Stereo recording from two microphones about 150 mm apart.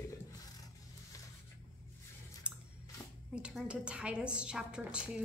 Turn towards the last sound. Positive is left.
turn(degrees=-5)  # may be behind; listen again after turning